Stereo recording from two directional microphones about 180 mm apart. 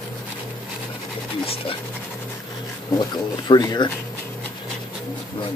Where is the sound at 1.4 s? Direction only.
30° left (ahead or behind).